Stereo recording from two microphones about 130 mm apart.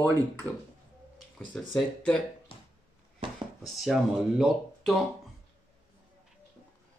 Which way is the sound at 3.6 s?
Centre (ahead or behind).